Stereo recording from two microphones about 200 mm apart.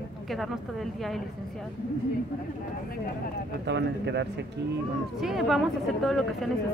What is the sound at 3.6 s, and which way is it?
Speech, 60° right (ahead or behind).